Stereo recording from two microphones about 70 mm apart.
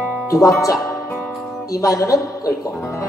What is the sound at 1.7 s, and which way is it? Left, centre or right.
A man's voice, left.